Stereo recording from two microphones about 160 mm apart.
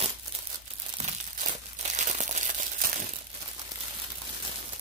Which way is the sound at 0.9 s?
45° right (ahead or behind).